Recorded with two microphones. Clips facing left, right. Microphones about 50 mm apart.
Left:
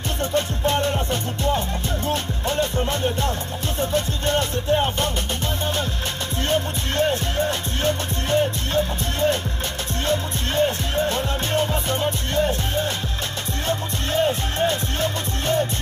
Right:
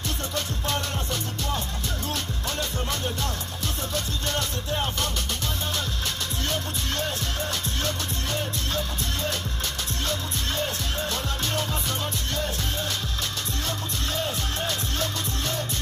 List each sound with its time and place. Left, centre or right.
0.2 s music: left
6.5 s music: left